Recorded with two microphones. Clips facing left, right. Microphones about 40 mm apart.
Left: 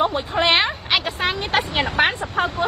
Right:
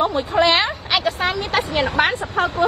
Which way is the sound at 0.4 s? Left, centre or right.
Left.